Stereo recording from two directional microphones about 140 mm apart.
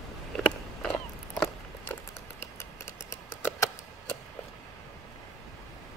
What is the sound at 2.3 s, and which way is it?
Scissors, 20° left (ahead or behind).